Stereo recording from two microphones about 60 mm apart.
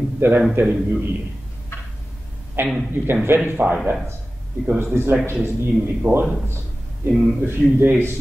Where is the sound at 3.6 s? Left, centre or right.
Centre.